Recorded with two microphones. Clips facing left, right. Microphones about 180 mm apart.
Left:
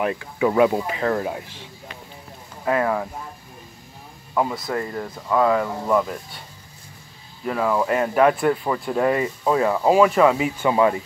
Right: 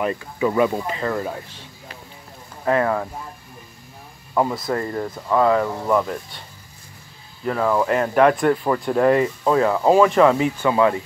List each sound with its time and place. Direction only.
0.0 s speech: 5° left (ahead or behind)
2.6 s speech: 5° left (ahead or behind)
4.4 s speech: centre (ahead or behind)
7.4 s speech: 5° left (ahead or behind)